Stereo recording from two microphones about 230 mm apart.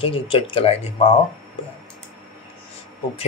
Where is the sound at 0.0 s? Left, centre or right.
Left.